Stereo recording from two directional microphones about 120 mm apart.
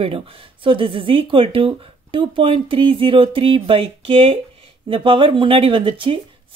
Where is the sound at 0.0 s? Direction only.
50° right (ahead or behind).